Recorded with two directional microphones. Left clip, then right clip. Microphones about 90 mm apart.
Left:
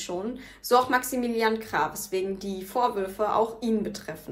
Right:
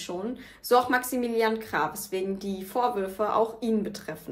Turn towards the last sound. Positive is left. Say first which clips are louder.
# even
turn(degrees=-30)  # may be behind; listen again after turning